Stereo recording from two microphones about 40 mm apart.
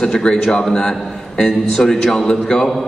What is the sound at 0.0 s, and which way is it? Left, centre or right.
A man's voice, centre.